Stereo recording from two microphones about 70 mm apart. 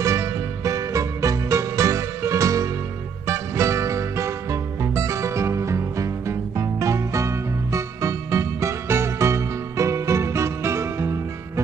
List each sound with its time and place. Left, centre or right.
0.0 s music: right